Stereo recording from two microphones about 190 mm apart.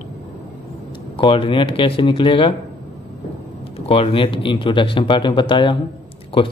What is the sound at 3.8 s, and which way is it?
Speech, 30° left (ahead or behind).